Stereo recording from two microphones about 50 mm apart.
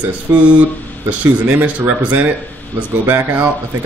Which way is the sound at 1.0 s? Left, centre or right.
Right.